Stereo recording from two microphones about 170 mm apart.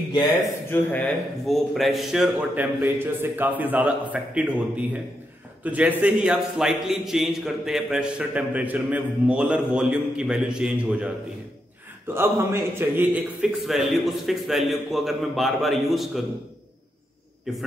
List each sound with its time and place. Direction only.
0.1 s speech: 25° left (ahead or behind)
0.7 s a man's voice: 5° left (ahead or behind)
12.1 s a man's voice: 15° right (ahead or behind)
17.5 s a man's voice: centre (ahead or behind)